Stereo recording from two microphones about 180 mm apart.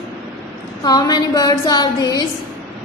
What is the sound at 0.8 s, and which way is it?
A woman's voice, 20° left (ahead or behind).